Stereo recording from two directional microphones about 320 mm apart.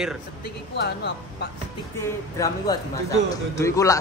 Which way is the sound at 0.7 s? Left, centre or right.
Left.